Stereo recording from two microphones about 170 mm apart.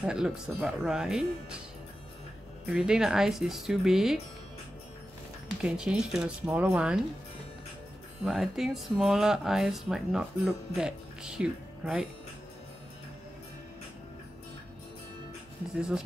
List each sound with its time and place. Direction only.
0.0 s speech: 5° right (ahead or behind)
2.7 s speech: 5° right (ahead or behind)
5.6 s speech: 5° right (ahead or behind)
8.2 s speech: centre (ahead or behind)